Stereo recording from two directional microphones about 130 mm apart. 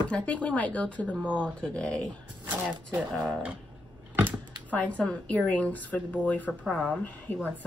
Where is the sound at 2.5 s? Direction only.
15° right (ahead or behind).